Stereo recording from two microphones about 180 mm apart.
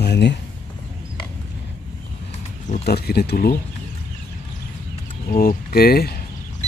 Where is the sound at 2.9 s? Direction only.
60° left (ahead or behind).